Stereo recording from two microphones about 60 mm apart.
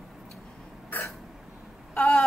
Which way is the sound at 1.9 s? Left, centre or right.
Left.